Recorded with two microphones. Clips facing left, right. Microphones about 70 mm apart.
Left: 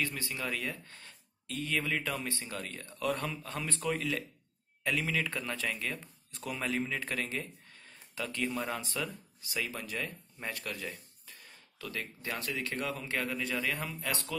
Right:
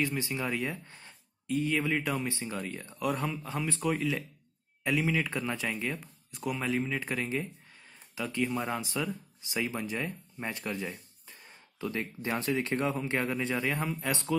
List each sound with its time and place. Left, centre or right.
0.0 s speech: centre
6.3 s speech: centre